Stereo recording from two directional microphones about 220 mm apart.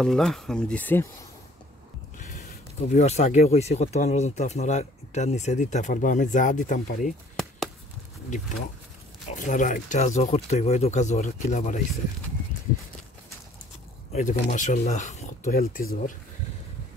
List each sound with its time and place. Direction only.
0.0 s speech: 5° left (ahead or behind)
2.1 s a sound: 35° left (ahead or behind)
2.9 s speech: 30° left (ahead or behind)
9.3 s speech: 35° left (ahead or behind)
14.1 s speech: 35° left (ahead or behind)